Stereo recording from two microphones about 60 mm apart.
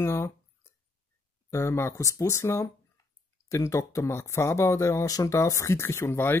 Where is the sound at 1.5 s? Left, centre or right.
Left.